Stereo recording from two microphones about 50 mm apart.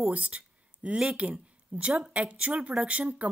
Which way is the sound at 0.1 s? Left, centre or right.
Right.